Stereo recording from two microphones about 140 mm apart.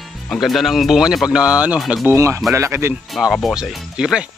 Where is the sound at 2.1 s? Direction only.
20° right (ahead or behind).